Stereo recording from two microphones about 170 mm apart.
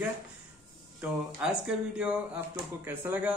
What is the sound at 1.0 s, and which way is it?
A man's voice, 5° right (ahead or behind).